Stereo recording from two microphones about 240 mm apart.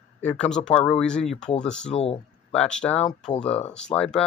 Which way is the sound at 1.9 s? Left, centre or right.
Left.